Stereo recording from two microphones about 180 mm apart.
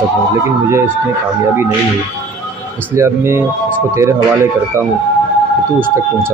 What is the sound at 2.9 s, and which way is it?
Speech, 15° right (ahead or behind).